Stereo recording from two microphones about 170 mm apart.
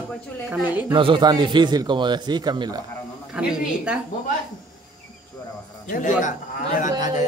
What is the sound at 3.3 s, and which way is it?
Speech, 5° right (ahead or behind).